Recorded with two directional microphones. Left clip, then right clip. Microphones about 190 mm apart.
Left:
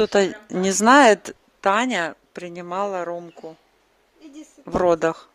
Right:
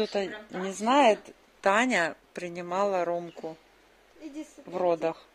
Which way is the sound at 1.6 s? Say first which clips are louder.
Left 4 dB; 30° left (ahead or behind).